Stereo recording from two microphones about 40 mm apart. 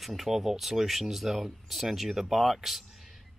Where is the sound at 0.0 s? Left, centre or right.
Centre.